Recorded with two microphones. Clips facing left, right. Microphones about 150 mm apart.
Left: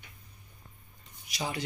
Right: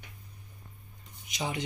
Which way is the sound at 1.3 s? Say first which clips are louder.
Right 1 dB; 20° right (ahead or behind).